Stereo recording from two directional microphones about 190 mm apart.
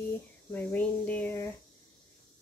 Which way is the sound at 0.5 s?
10° left (ahead or behind).